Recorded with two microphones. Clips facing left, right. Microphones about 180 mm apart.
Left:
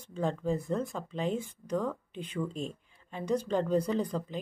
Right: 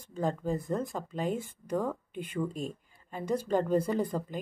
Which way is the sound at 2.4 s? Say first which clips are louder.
Right 1 dB; 10° right (ahead or behind).